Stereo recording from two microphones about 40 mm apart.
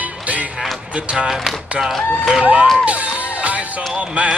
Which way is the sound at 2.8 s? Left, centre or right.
Right.